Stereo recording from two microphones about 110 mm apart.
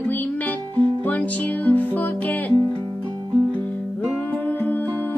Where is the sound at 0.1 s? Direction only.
15° left (ahead or behind).